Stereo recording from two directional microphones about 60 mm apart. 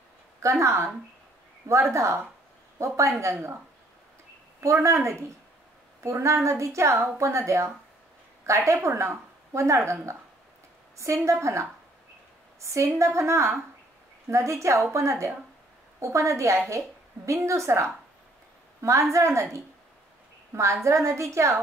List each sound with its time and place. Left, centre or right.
0.4 s a woman's voice: right
4.6 s a woman's voice: right
11.2 s a woman's voice: right
12.6 s a woman's voice: right